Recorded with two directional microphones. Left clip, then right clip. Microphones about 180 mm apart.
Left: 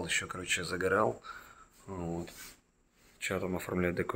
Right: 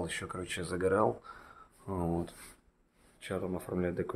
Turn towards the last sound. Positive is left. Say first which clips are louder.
# left 2 dB
turn(degrees=0)  # may be behind; listen again after turning